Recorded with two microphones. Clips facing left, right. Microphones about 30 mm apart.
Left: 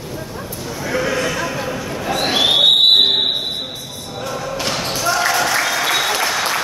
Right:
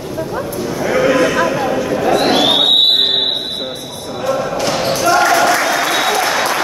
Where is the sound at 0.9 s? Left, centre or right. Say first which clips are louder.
Right 7 dB; right; by 2.7 s centre.